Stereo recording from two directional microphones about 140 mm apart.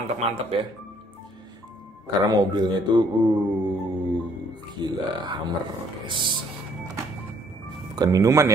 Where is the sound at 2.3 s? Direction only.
30° right (ahead or behind).